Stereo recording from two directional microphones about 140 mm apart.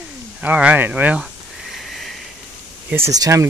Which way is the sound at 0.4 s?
10° right (ahead or behind).